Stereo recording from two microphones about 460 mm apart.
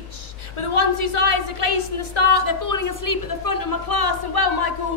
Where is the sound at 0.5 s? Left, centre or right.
Left.